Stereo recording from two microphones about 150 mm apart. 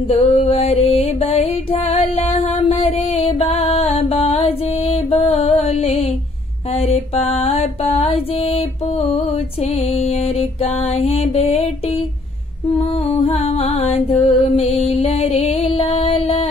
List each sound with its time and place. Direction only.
0.1 s music: 40° left (ahead or behind)
6.7 s mantra: 40° left (ahead or behind)
12.7 s music: 40° left (ahead or behind)